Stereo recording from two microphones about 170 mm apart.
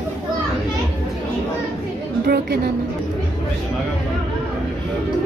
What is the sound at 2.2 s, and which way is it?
Speech, 70° right (ahead or behind).